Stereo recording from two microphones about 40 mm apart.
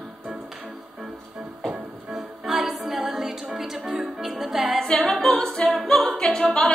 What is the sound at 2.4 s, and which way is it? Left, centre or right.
Music, centre.